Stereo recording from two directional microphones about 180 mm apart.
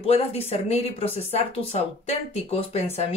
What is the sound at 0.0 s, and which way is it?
Speech, 35° left (ahead or behind).